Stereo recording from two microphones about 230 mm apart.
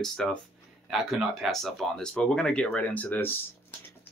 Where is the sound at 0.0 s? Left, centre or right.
Centre.